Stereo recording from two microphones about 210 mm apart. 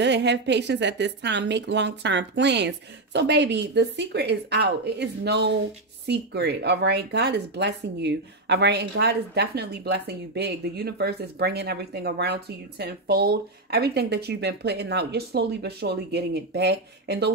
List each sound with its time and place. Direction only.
0.0 s a woman's voice: 55° right (ahead or behind)